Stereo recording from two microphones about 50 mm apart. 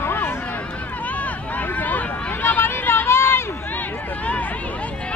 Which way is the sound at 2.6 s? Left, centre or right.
Left.